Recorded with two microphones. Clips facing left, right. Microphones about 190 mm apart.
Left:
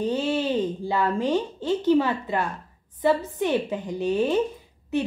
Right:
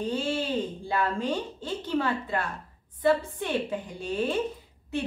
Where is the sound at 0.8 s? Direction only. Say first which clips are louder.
Left 2 dB; 10° left (ahead or behind).